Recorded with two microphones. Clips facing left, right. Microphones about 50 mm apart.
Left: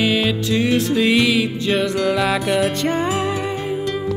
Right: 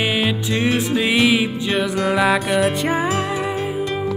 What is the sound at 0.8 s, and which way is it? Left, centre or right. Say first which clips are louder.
Music: left 1 dB; centre.